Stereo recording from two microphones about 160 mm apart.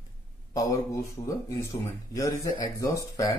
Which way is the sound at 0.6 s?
20° left (ahead or behind).